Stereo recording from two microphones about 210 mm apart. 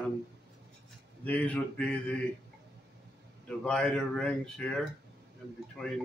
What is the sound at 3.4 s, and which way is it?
Speech, 5° left (ahead or behind).